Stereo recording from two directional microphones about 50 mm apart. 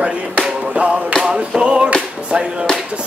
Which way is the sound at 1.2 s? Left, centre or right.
Centre.